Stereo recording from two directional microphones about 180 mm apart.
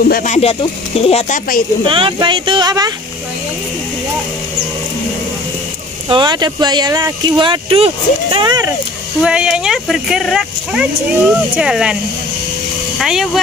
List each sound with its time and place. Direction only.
0.0 s speech: 50° left (ahead or behind)
1.9 s speech: 30° right (ahead or behind)
6.0 s speech: 25° right (ahead or behind)
9.2 s speech: 5° right (ahead or behind)
13.0 s speech: centre (ahead or behind)